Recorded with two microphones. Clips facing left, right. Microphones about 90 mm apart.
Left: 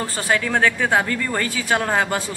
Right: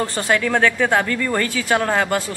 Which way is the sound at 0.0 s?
10° left (ahead or behind).